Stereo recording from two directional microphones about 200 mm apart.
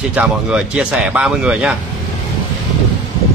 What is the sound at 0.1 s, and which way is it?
Speech, 5° right (ahead or behind).